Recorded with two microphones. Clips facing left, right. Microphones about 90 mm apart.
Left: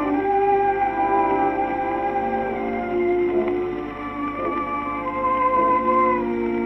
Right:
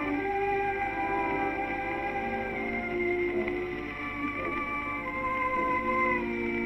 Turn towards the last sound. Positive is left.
turn(degrees=50)  # may be behind; listen again after turning